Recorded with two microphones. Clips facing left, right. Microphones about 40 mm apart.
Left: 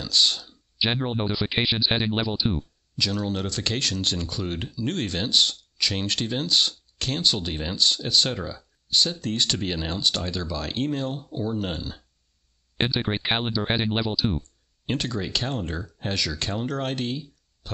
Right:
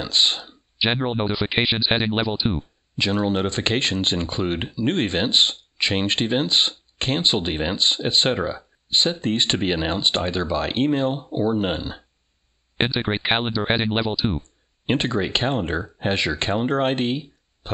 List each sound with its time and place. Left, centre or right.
0.0 s speech: right